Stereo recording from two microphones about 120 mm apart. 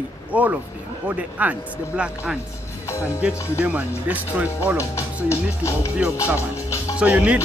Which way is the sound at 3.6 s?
10° right (ahead or behind).